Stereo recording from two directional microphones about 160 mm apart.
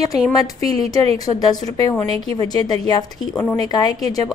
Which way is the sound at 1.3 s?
25° left (ahead or behind).